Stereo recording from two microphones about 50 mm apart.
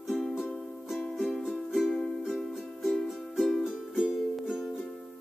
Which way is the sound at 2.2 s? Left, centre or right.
Centre.